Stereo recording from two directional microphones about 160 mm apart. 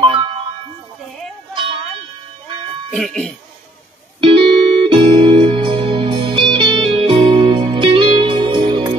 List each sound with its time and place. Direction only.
0.0 s music: 30° right (ahead or behind)
1.5 s a sound: 30° right (ahead or behind)
2.9 s speech: 5° left (ahead or behind)
4.2 s music: 35° right (ahead or behind)